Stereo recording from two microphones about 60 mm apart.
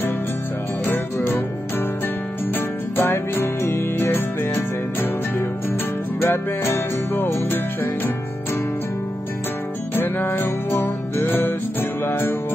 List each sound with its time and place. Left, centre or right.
0.8 s music: left
2.5 s music: left
6.2 s music: left
9.9 s music: left